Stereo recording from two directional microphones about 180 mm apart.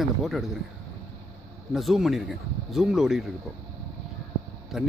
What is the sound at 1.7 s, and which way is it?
Speech, centre (ahead or behind).